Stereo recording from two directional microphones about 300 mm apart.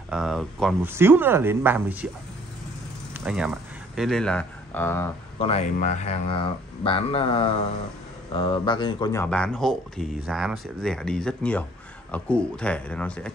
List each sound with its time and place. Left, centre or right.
0.1 s speech: centre
3.3 s speech: centre
5.4 s speech: left; by 13.3 s centre